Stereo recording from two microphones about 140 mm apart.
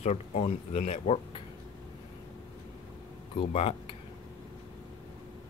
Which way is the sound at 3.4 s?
40° left (ahead or behind).